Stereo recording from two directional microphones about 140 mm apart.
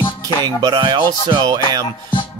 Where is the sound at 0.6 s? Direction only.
35° right (ahead or behind).